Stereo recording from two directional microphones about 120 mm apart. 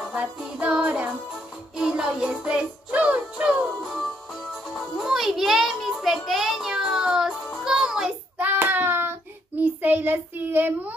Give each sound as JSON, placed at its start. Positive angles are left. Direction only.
{"t": 0.1, "sound": "music", "side_deg": -10}
{"t": 4.9, "sound": "child singing", "side_deg": -5}